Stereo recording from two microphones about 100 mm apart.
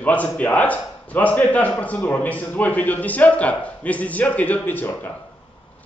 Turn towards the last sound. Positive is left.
turn(degrees=20)  # may be behind; listen again after turning